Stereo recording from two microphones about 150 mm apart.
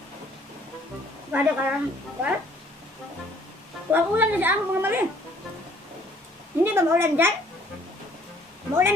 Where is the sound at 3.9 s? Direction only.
10° right (ahead or behind).